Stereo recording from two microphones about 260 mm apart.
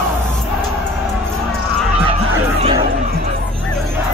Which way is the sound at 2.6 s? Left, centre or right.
Right.